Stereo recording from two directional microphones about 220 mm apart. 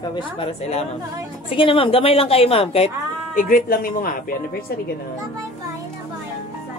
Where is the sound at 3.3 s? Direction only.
40° left (ahead or behind).